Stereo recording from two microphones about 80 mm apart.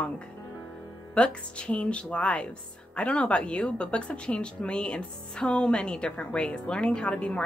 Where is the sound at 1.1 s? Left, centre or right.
Centre.